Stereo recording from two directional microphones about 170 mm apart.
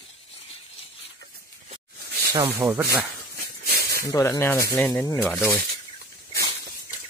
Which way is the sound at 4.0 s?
20° left (ahead or behind).